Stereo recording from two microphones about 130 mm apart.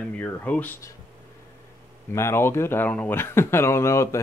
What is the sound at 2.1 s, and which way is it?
Speech, 20° left (ahead or behind).